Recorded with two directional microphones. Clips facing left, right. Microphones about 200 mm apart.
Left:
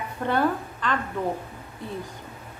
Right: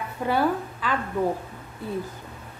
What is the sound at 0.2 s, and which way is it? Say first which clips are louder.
Speech: right 1 dB; 5° right (ahead or behind).